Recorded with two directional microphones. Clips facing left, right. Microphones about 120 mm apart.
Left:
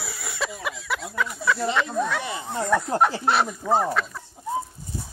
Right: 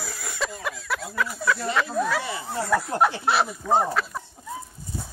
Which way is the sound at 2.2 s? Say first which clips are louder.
Even; 20° left (ahead or behind).